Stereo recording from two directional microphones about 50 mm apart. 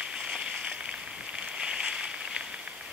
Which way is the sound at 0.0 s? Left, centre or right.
Centre.